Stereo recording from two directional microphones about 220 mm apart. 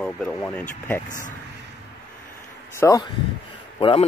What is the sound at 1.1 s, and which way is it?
Speech, 35° left (ahead or behind).